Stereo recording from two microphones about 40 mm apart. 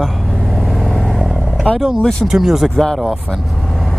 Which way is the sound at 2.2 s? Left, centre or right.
Centre.